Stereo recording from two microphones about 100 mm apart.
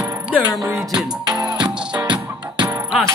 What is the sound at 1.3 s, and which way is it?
Music, 45° right (ahead or behind).